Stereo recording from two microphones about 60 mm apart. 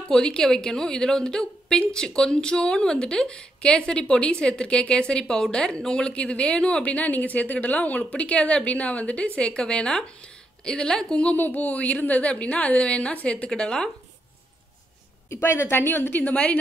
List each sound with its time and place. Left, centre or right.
0.1 s a woman's voice: centre
11.3 s speech: left
13.5 s a woman's voice: centre
15.2 s a woman's voice: left